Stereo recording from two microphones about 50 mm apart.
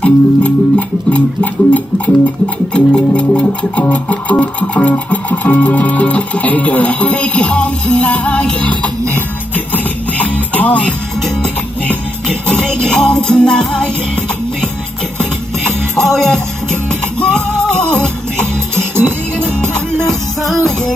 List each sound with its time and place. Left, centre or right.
0.0 s music: left
2.7 s music: left
12.8 s music: centre
16.1 s music: centre
17.7 s music: centre
19.6 s music: centre